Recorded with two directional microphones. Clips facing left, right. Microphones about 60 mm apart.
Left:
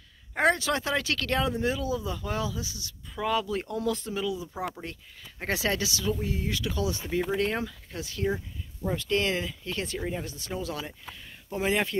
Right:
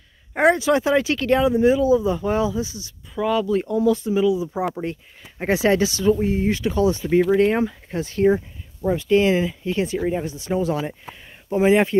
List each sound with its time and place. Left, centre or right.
0.3 s speech: centre
3.2 s speech: centre
4.1 s speech: centre; by 8.4 s right
8.8 s speech: centre